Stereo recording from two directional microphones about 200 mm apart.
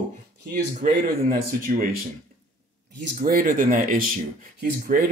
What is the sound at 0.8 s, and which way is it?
A man's voice, 45° right (ahead or behind).